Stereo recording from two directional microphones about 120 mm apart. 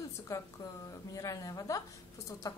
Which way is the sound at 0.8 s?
30° left (ahead or behind).